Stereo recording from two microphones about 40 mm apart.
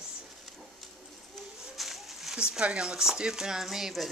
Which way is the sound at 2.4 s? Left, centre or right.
Right.